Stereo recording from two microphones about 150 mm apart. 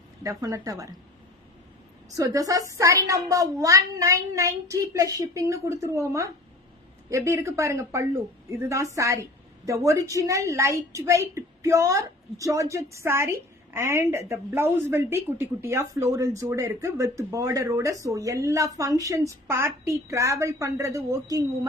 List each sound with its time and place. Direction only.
0.2 s a woman's voice: 20° right (ahead or behind)
2.1 s a woman's voice: 25° right (ahead or behind)